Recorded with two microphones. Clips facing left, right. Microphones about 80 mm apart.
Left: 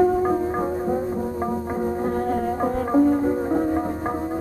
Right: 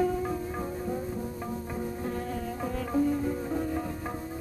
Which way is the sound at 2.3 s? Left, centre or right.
Left.